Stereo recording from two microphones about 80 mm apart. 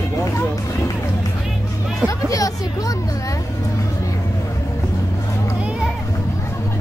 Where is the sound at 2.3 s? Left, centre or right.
Left.